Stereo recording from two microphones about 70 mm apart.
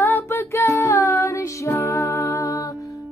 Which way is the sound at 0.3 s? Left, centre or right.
Left.